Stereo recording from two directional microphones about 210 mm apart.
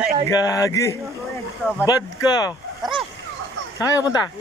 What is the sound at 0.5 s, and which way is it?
Speech, 15° left (ahead or behind).